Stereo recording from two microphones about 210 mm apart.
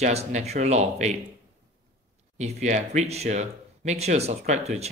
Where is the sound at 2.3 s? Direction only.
35° right (ahead or behind).